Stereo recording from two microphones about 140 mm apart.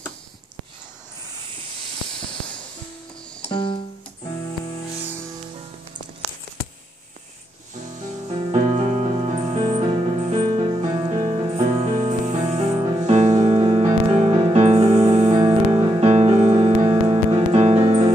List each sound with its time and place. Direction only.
2.1 s hiss: 5° left (ahead or behind)
3.4 s music: 35° left (ahead or behind)
8.3 s music: 40° right (ahead or behind)
13.0 s music: 50° right (ahead or behind)